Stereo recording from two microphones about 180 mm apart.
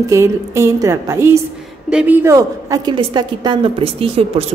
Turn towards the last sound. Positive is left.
turn(degrees=-25)  # may be behind; listen again after turning